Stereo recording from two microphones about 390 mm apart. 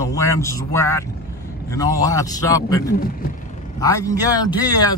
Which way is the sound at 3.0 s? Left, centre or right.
Left.